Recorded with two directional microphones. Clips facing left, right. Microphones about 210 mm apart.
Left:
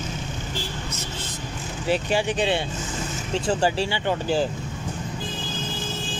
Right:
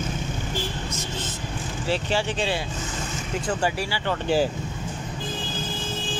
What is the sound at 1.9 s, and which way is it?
Speech, 15° left (ahead or behind).